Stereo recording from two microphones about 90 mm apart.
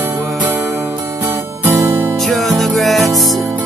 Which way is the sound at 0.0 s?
20° right (ahead or behind).